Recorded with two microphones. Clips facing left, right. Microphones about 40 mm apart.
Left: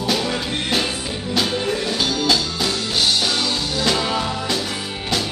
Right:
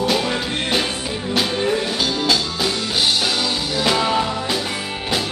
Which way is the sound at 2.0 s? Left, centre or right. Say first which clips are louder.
Even; centre.